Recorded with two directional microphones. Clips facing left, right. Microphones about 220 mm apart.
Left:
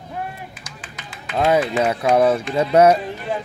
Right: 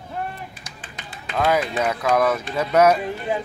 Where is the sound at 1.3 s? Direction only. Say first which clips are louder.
Left 3 dB; 30° left (ahead or behind).